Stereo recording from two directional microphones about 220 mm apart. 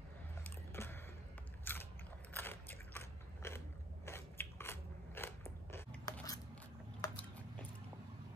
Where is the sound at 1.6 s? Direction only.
10° left (ahead or behind).